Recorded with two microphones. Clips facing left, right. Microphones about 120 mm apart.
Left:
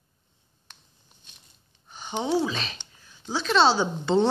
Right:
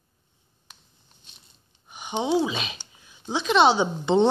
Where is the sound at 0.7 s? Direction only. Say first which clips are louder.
Right 1 dB; centre (ahead or behind).